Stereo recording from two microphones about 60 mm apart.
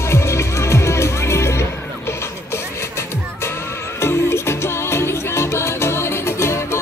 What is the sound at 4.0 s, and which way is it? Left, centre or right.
Music, left.